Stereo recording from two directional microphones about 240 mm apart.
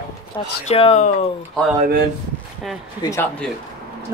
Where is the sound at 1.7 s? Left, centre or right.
Right.